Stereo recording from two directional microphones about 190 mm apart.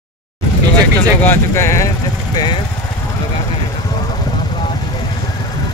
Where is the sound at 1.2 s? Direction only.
10° left (ahead or behind).